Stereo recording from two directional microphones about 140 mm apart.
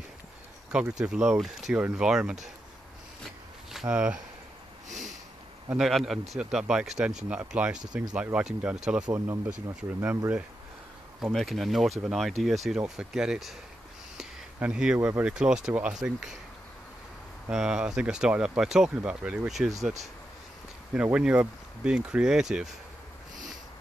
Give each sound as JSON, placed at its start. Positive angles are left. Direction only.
{"t": 0.7, "sound": "speech", "side_deg": -5}
{"t": 3.7, "sound": "speech", "side_deg": -5}
{"t": 4.8, "sound": "a sound", "side_deg": -60}
{"t": 5.8, "sound": "speech", "side_deg": 0}
{"t": 9.9, "sound": "speech", "side_deg": -20}
{"t": 11.3, "sound": "speech", "side_deg": 0}
{"t": 17.5, "sound": "speech", "side_deg": -5}
{"t": 20.9, "sound": "speech", "side_deg": -10}